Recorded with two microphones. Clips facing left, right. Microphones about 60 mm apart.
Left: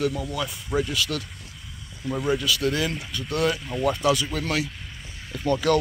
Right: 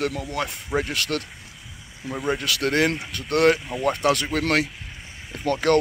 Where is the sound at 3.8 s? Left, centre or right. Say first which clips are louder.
Right 1 dB; right.